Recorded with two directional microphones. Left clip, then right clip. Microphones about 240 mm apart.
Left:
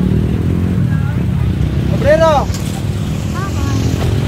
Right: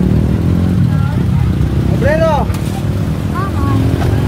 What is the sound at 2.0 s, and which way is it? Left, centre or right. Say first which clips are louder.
Vehicle: left 3 dB; left.